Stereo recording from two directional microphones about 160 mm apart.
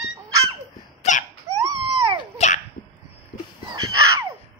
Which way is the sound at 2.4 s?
45° left (ahead or behind).